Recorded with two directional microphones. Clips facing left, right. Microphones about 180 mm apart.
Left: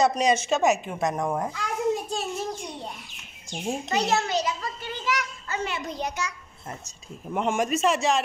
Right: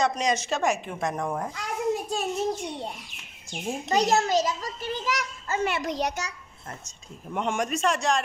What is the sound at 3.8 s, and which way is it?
A child's voice, 40° right (ahead or behind).